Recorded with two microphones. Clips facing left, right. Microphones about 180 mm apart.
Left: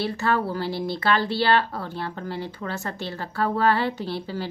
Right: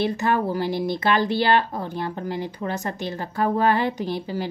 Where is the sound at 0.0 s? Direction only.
15° right (ahead or behind).